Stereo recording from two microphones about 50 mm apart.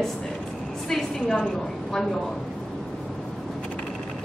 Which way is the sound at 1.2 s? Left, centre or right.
Left.